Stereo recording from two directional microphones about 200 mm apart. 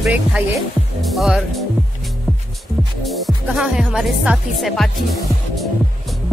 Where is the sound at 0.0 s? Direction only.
5° right (ahead or behind).